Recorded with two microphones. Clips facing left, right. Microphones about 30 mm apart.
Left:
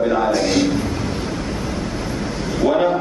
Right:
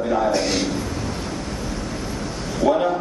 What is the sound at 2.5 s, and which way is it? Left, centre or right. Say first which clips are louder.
Speech: left 2 dB; centre.